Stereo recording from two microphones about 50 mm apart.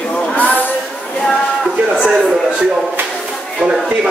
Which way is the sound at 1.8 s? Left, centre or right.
Centre.